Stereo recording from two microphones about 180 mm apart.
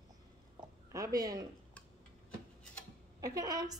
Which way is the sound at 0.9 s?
20° right (ahead or behind).